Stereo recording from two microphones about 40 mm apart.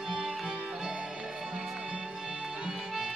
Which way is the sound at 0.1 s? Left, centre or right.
Centre.